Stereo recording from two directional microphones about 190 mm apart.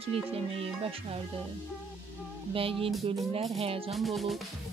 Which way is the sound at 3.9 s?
Centre (ahead or behind).